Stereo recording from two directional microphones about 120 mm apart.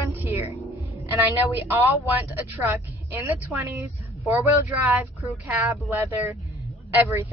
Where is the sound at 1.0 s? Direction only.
20° right (ahead or behind).